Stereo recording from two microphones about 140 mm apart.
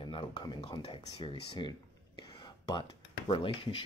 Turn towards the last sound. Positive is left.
turn(degrees=35)  # may be behind; listen again after turning